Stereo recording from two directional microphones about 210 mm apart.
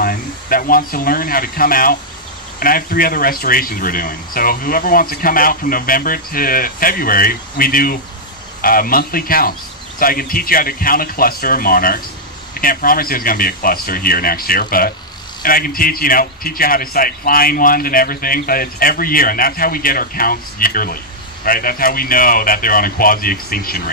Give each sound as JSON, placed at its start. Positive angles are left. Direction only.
{"t": 0.0, "sound": "a man's voice", "side_deg": 40}